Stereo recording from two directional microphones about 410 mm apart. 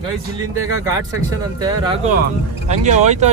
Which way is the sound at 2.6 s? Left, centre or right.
Centre.